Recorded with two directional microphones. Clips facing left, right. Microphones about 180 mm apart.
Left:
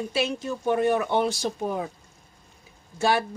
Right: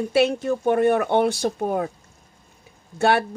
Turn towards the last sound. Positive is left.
turn(degrees=-60)  # may be behind; listen again after turning